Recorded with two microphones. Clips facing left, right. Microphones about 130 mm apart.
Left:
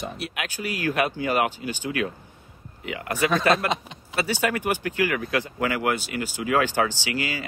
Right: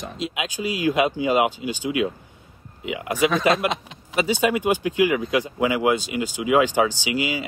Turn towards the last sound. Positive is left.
turn(degrees=-15)  # may be behind; listen again after turning